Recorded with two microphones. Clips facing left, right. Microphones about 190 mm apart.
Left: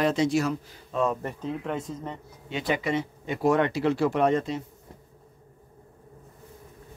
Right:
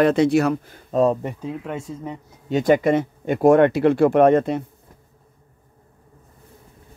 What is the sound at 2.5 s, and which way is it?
Speech, 45° right (ahead or behind).